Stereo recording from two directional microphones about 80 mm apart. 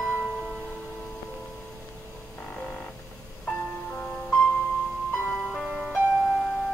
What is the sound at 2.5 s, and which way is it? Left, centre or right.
Frog, centre.